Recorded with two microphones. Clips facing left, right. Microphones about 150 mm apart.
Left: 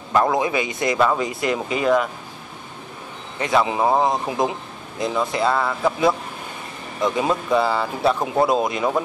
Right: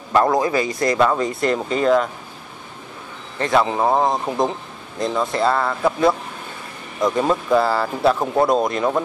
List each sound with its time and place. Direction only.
0.1 s speech: centre (ahead or behind)
0.4 s speech: 20° left (ahead or behind)
0.9 s speech: 5° left (ahead or behind)
3.6 s speech: 5° left (ahead or behind)